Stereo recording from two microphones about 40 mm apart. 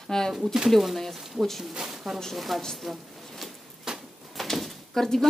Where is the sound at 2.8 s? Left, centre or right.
Centre.